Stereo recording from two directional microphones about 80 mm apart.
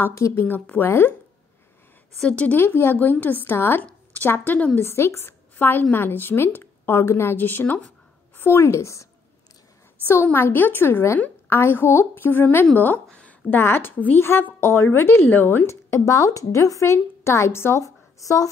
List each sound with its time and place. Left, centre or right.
0.3 s a woman's voice: left
2.1 s a woman's voice: centre
3.8 s a sound: centre
4.3 s a woman's voice: left
4.7 s a woman's voice: left
10.0 s a woman's voice: left